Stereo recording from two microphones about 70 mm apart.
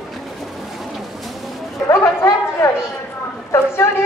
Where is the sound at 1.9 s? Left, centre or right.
Left.